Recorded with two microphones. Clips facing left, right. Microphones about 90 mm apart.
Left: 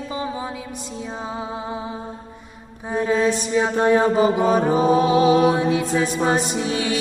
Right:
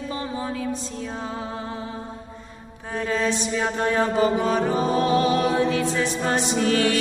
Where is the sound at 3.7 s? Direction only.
20° left (ahead or behind).